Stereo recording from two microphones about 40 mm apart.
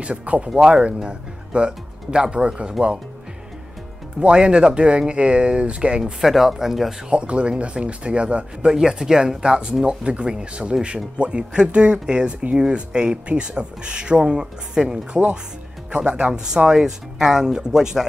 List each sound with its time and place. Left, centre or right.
0.0 s speech: right
4.2 s speech: right
6.2 s speech: centre
7.1 s speech: right
8.6 s speech: centre